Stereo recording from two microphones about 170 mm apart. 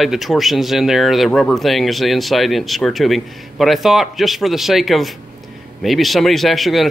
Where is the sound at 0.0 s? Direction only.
Centre (ahead or behind).